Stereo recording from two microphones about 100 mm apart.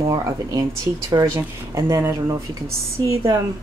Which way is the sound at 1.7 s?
30° right (ahead or behind).